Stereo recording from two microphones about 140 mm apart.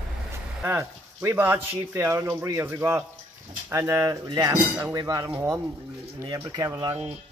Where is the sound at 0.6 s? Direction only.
15° right (ahead or behind).